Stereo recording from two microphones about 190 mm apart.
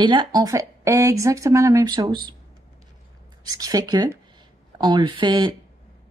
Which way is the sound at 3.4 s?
20° right (ahead or behind).